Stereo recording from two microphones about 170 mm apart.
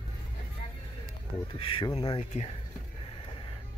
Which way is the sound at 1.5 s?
30° left (ahead or behind).